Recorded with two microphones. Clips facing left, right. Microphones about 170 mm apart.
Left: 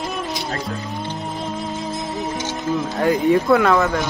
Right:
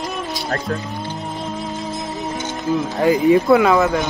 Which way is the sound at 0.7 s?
60° right (ahead or behind).